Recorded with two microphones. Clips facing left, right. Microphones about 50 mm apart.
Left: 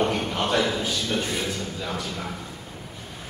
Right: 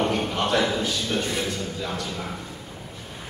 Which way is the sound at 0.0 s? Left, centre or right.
Centre.